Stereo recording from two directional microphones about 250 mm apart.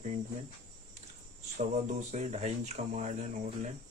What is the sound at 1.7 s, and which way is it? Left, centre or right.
Speech, right.